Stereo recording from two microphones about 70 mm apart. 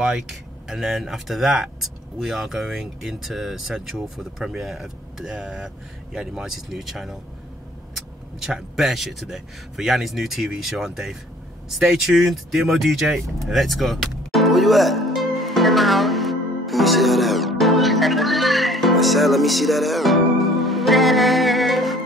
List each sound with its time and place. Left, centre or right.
0.0 s speech: centre
13.5 s music: centre